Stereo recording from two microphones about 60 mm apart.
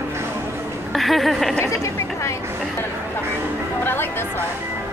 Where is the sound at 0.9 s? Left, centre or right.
Centre.